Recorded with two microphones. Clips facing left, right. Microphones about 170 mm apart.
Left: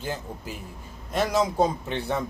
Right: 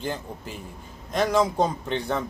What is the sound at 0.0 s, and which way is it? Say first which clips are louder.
A man's voice: right 1 dB; 5° left (ahead or behind).